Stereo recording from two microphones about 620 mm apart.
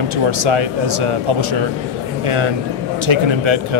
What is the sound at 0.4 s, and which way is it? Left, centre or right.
Speech, right.